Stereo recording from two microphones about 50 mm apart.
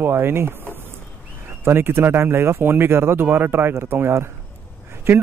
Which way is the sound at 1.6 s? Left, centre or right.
Right.